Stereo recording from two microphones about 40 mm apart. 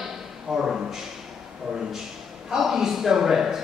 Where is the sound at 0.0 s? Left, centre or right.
Centre.